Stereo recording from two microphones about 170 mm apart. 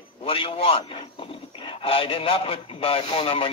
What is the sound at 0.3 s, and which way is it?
Speech, 35° left (ahead or behind).